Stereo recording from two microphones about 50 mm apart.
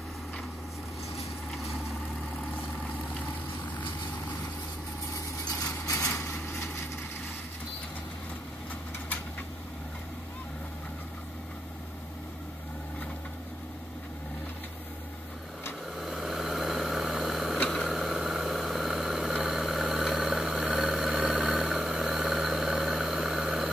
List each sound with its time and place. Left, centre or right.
5.9 s vehicle: left
16.0 s vehicle: centre
17.6 s a sound: centre
17.9 s vehicle: centre; by 21.6 s right
21.8 s vehicle: centre